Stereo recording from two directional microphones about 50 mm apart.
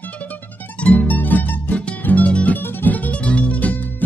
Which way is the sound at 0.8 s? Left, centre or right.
Left.